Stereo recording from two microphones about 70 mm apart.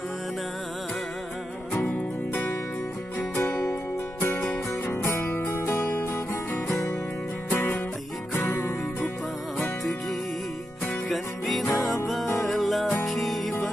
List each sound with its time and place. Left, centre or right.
1.9 s music: left
3.3 s music: left
4.8 s music: left
8.3 s music: left
11.1 s music: centre